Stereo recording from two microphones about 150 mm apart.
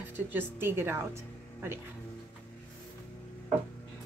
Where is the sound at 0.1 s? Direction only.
15° right (ahead or behind).